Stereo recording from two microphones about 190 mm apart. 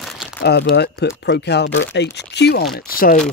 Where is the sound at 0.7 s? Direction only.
60° left (ahead or behind).